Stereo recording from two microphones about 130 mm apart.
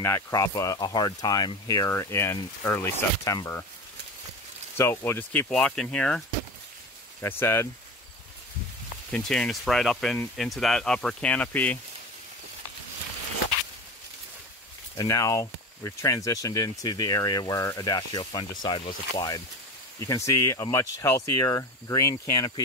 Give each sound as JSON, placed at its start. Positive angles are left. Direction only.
{"t": 0.0, "sound": "speech", "side_deg": 25}
{"t": 4.7, "sound": "speech", "side_deg": 20}
{"t": 5.5, "sound": "speech", "side_deg": 5}
{"t": 7.2, "sound": "speech", "side_deg": 20}
{"t": 9.1, "sound": "speech", "side_deg": 5}
{"t": 15.0, "sound": "speech", "side_deg": 25}